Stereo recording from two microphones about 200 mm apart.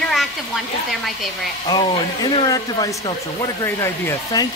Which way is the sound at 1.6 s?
25° left (ahead or behind).